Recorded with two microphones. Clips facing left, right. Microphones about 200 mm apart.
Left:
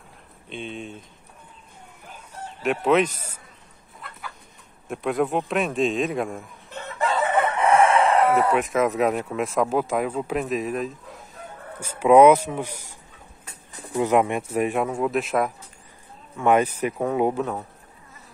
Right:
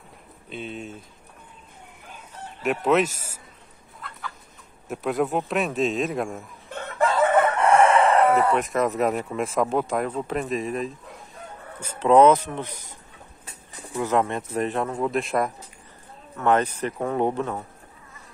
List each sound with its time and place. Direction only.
0.5 s speech: 5° right (ahead or behind)
2.6 s speech: centre (ahead or behind)
4.8 s speech: centre (ahead or behind)
6.7 s chicken: 50° right (ahead or behind)
7.6 s speech: centre (ahead or behind)
13.9 s speech: 15° left (ahead or behind)